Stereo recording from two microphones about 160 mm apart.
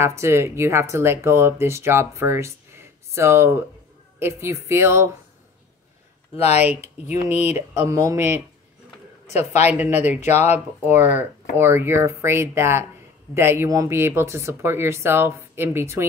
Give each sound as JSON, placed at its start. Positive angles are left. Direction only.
{"t": 0.0, "sound": "speech", "side_deg": -15}
{"t": 6.3, "sound": "speech", "side_deg": 40}
{"t": 7.2, "sound": "speech", "side_deg": -15}
{"t": 9.3, "sound": "a man's voice", "side_deg": 45}
{"t": 9.7, "sound": "speech", "side_deg": -10}